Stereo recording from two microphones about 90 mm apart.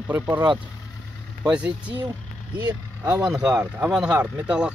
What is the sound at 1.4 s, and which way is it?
Speech, 10° right (ahead or behind).